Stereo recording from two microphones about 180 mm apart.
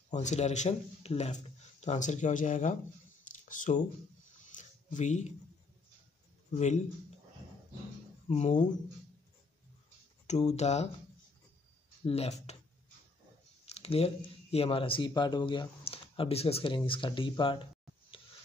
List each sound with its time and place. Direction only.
0.1 s speech: 40° left (ahead or behind)
4.6 s a sound: 40° left (ahead or behind)
6.5 s speech: 40° left (ahead or behind)
8.3 s speech: 40° left (ahead or behind)
10.2 s speech: 40° left (ahead or behind)
12.0 s speech: 35° left (ahead or behind)
13.7 s speech: 35° left (ahead or behind)